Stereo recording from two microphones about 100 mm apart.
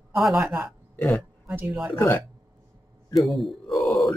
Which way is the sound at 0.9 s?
25° left (ahead or behind).